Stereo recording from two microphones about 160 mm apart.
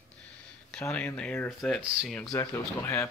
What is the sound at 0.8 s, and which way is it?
Speech, 10° left (ahead or behind).